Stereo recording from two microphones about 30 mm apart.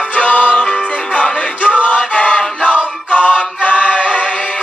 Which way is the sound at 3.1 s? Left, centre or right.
Left.